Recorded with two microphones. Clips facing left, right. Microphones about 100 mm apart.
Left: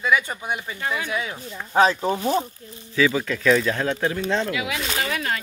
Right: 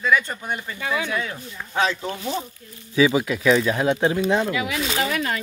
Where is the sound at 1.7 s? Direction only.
35° left (ahead or behind).